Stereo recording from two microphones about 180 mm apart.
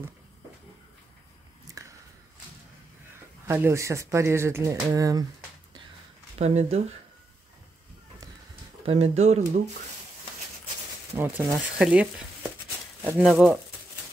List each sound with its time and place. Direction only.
1.8 s biting: 20° right (ahead or behind)
3.4 s speech: 15° right (ahead or behind)
6.3 s speech: 35° right (ahead or behind)
8.8 s speech: 35° right (ahead or behind)
11.1 s speech: 10° right (ahead or behind)